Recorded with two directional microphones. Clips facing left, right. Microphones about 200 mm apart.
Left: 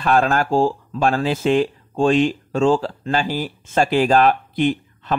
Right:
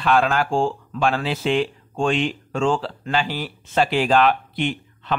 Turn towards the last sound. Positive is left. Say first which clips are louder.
# left 4 dB
turn(degrees=40)  # may be behind; listen again after turning